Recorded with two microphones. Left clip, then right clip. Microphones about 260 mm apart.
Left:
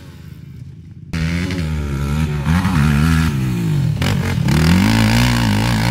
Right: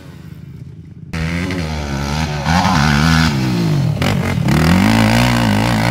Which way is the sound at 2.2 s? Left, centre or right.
Centre.